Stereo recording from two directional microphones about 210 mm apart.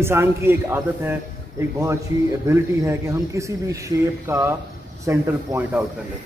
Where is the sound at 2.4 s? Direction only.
10° right (ahead or behind).